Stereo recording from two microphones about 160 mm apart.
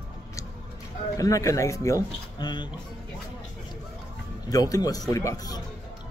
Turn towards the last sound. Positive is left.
turn(degrees=25)  # may be behind; listen again after turning